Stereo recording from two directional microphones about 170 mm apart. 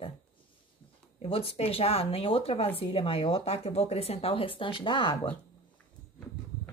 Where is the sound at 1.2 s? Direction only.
35° left (ahead or behind).